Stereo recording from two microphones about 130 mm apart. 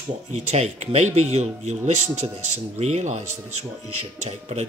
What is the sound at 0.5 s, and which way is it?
Speech, 55° right (ahead or behind).